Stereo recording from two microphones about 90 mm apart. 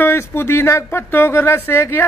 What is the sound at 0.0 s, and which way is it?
Speech, 30° left (ahead or behind).